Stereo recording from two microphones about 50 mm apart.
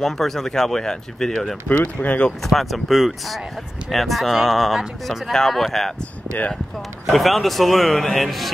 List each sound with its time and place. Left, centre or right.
0.0 s speech: centre
1.7 s speech: left
2.4 s speech: centre
7.1 s speech: centre